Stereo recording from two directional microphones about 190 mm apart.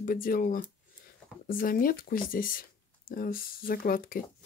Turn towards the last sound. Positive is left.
turn(degrees=50)  # may be behind; listen again after turning